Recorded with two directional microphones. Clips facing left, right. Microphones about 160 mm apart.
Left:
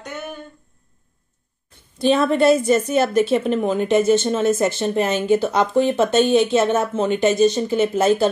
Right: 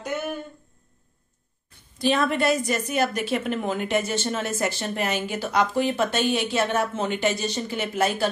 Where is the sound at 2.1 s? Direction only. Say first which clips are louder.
Left 7 dB; 30° left (ahead or behind).